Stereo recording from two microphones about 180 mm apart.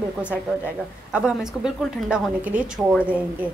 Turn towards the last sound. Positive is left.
turn(degrees=-10)  # may be behind; listen again after turning